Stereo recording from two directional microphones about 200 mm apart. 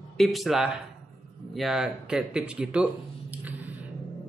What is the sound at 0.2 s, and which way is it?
A man's voice, centre (ahead or behind).